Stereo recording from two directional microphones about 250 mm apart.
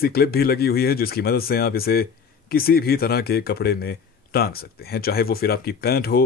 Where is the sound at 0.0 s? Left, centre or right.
Left.